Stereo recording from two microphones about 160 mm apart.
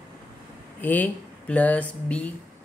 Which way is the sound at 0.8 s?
10° left (ahead or behind).